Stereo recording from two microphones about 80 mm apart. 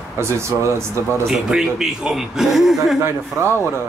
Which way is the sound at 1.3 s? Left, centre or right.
Centre.